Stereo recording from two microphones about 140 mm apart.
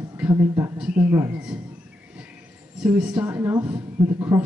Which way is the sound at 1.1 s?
20° right (ahead or behind).